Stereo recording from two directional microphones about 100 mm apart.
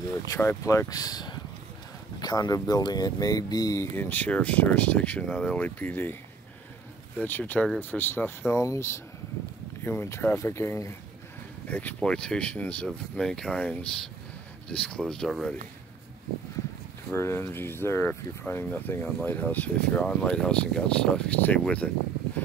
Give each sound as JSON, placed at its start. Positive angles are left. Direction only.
{"t": 0.3, "sound": "speech", "side_deg": 30}
{"t": 3.9, "sound": "speech", "side_deg": 20}
{"t": 7.2, "sound": "speech", "side_deg": 20}
{"t": 11.7, "sound": "speech", "side_deg": 15}
{"t": 17.1, "sound": "speech", "side_deg": 25}